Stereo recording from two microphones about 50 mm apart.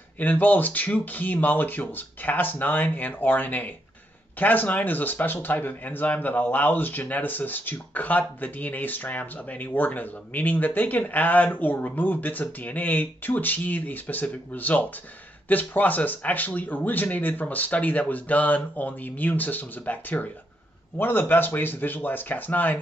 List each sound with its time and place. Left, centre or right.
0.2 s speech: left
21.0 s speech: left